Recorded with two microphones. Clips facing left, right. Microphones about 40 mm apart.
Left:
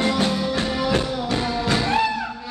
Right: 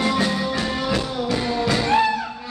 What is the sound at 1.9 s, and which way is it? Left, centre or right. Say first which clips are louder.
Music: right 4 dB; centre.